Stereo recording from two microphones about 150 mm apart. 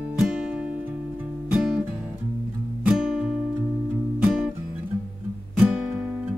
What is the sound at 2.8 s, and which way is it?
Guitar, 5° right (ahead or behind).